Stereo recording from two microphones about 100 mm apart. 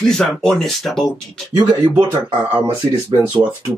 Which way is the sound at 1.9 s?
15° right (ahead or behind).